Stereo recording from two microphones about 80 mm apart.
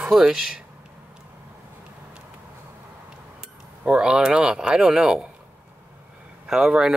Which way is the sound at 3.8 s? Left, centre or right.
Centre.